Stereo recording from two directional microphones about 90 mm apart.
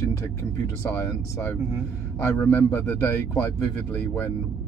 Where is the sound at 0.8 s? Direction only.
20° left (ahead or behind).